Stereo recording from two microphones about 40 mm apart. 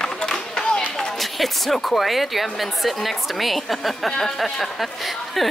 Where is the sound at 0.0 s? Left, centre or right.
Centre.